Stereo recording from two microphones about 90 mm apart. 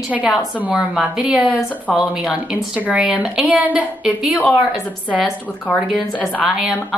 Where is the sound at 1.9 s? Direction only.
10° right (ahead or behind).